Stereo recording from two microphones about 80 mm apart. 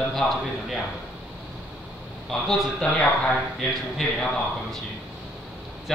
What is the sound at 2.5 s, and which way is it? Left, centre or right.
Speech, centre.